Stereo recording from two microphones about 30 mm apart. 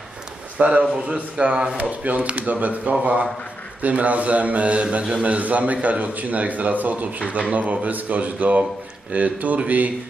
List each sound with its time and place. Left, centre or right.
0.6 s a man's voice: right
1.0 s speech: right
1.5 s a man's voice: right
1.8 s a man's voice: right
7.2 s a man's voice: right
7.5 s a man's voice: right